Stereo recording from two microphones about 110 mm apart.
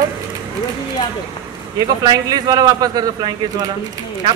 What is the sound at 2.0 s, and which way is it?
A man's voice, 40° right (ahead or behind).